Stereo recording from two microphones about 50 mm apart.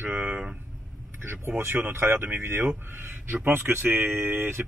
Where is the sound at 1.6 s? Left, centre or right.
Right.